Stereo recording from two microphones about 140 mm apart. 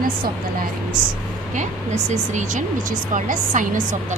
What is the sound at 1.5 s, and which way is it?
Speech, 55° right (ahead or behind).